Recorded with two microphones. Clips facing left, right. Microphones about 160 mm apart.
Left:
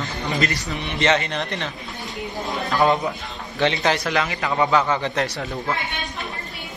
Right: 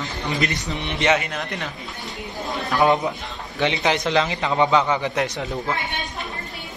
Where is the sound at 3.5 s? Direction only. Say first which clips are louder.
Left 1 dB; 20° right (ahead or behind).